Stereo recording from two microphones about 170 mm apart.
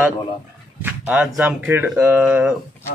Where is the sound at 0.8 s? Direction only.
10° right (ahead or behind).